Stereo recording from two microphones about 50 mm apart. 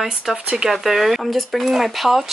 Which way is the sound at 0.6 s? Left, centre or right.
Centre.